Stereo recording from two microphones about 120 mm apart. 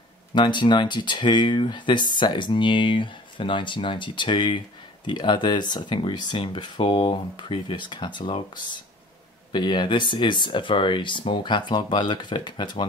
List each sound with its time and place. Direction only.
0.3 s speech: 40° left (ahead or behind)
9.5 s speech: 40° left (ahead or behind)